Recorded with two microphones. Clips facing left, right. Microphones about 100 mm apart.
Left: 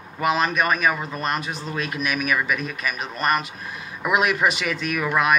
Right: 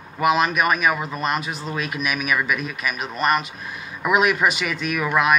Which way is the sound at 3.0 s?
Centre (ahead or behind).